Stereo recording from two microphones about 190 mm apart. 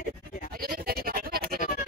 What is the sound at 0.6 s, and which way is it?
Music, 50° right (ahead or behind).